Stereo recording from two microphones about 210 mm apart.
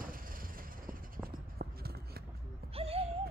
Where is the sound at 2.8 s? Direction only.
30° right (ahead or behind).